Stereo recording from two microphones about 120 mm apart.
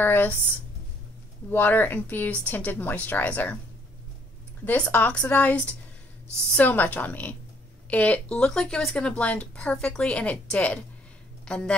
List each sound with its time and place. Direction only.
0.0 s speech: 15° left (ahead or behind)
1.5 s speech: 15° left (ahead or behind)
4.6 s speech: 15° left (ahead or behind)